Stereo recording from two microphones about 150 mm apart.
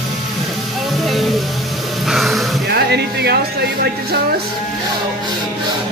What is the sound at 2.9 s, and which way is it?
Speech, 90° right.